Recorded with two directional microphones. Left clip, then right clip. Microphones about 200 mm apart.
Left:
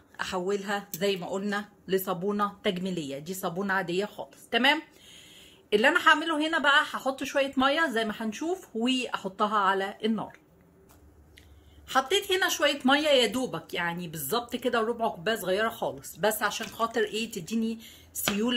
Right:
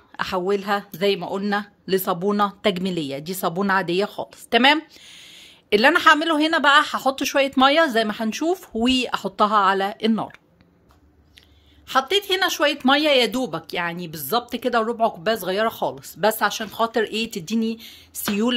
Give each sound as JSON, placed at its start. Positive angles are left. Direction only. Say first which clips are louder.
{"t": 0.2, "sound": "speech", "louder": "right 7 dB", "side_deg": -60}
{"t": 11.9, "sound": "speech", "louder": "right 5 dB", "side_deg": -60}